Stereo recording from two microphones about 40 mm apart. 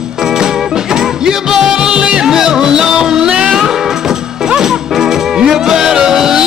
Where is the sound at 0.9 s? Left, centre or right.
Centre.